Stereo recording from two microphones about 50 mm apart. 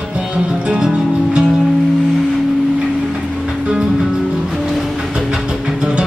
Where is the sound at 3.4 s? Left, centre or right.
Centre.